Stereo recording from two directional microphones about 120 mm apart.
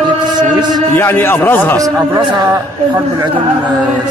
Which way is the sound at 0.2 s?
35° right (ahead or behind).